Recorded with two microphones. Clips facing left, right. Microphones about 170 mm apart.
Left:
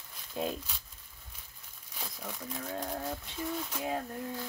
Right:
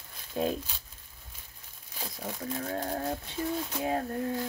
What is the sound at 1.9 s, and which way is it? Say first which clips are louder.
Crumpling: right 4 dB; 30° right (ahead or behind).